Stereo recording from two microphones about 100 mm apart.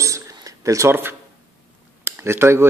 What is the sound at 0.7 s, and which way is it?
Speech, 30° right (ahead or behind).